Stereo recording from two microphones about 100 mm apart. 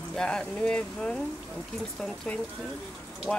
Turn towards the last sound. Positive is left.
turn(degrees=5)  # may be behind; listen again after turning